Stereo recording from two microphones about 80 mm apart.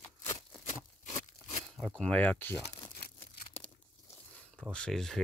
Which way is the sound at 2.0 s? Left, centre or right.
Centre.